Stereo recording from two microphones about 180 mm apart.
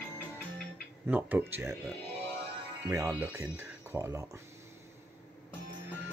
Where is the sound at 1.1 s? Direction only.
10° right (ahead or behind).